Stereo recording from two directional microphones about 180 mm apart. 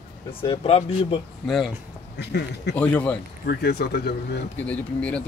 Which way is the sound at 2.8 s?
10° left (ahead or behind).